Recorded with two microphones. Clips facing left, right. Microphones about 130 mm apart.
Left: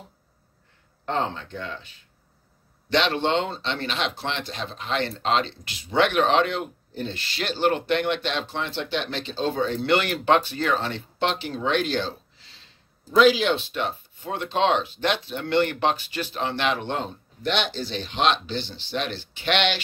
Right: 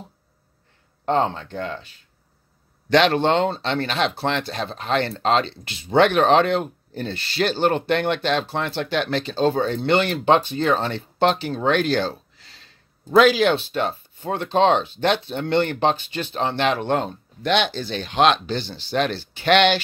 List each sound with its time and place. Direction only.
1.0 s speech: 40° right (ahead or behind)
2.9 s speech: 50° right (ahead or behind)
9.8 s speech: 30° right (ahead or behind)
10.8 s speech: 40° right (ahead or behind)
13.1 s speech: 55° right (ahead or behind)
17.5 s speech: 55° right (ahead or behind)